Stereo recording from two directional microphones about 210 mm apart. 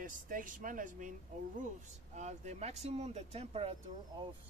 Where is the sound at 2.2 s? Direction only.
35° right (ahead or behind).